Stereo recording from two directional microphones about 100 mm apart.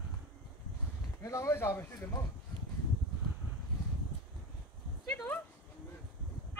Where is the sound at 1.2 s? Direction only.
35° left (ahead or behind).